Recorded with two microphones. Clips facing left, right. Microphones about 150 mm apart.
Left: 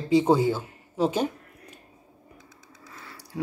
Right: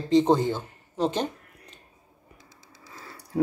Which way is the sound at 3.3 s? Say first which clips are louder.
Right 8 dB; 50° right (ahead or behind).